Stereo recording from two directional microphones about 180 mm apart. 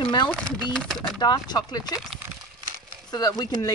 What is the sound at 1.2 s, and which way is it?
Speech, 25° left (ahead or behind).